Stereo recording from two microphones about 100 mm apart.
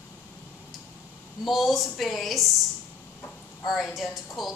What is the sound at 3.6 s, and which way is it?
Speech, centre (ahead or behind).